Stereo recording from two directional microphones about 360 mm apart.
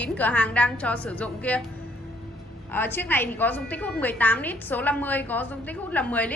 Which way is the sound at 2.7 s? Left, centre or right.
Centre.